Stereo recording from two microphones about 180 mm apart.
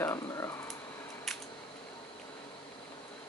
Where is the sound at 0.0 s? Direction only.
15° left (ahead or behind).